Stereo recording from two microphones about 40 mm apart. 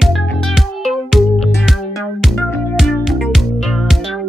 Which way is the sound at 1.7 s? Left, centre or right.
Centre.